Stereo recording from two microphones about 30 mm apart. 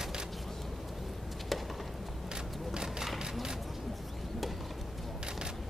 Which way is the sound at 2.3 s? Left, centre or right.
Right.